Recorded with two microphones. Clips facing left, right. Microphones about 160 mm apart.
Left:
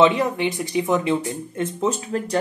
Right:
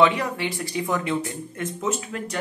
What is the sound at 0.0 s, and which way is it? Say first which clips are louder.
Speech: left 3 dB; 20° left (ahead or behind).